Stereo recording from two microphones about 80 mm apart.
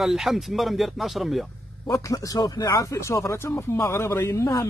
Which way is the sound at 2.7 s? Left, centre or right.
Left.